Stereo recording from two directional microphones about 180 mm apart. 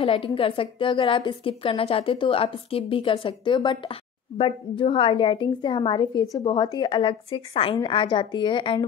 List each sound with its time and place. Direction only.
0.0 s a woman's voice: 30° left (ahead or behind)